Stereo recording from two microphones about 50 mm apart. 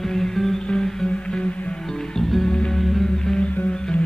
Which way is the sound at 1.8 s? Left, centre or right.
Centre.